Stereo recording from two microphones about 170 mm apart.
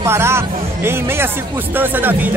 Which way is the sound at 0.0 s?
15° right (ahead or behind).